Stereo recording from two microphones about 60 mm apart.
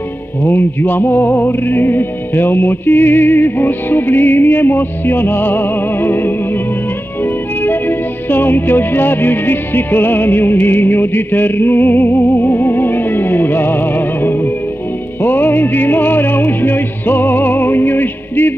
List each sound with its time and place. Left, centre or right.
0.4 s music: left
7.6 s music: left